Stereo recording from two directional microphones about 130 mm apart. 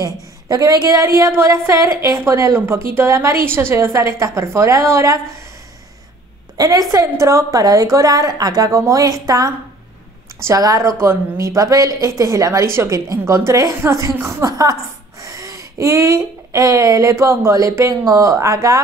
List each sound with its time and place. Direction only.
0.0 s a woman's voice: 25° right (ahead or behind)
6.5 s a woman's voice: 30° right (ahead or behind)